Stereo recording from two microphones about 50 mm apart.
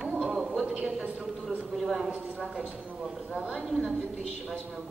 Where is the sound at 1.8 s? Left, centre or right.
Centre.